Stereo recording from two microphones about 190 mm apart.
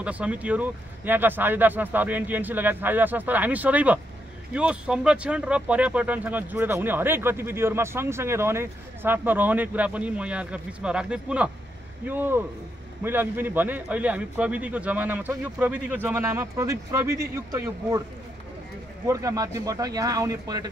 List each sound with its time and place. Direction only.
0.0 s speech: 5° right (ahead or behind)
19.0 s speech: 15° right (ahead or behind)